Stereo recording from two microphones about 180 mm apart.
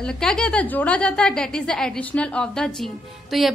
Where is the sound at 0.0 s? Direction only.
5° left (ahead or behind).